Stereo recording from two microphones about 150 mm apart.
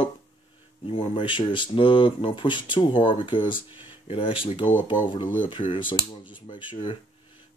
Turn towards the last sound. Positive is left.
turn(degrees=35)  # may be behind; listen again after turning